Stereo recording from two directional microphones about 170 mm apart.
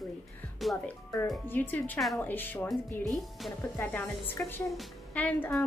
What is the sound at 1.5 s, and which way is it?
Speech, 10° left (ahead or behind).